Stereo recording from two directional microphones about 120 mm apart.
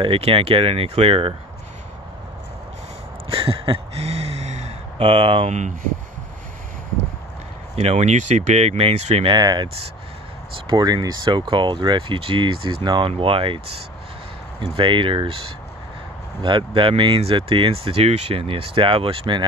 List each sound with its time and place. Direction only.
0.0 s speech: 50° right (ahead or behind)
3.3 s a sound: 50° right (ahead or behind)
7.7 s speech: 60° right (ahead or behind)
9.2 s speech: 35° right (ahead or behind)
10.7 s speech: 35° right (ahead or behind); by 13.6 s 50° right (ahead or behind)
14.6 s speech: 45° right (ahead or behind)
16.4 s speech: 45° right (ahead or behind)